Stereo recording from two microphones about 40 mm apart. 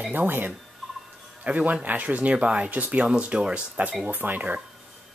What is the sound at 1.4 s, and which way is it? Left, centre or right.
Speech, right.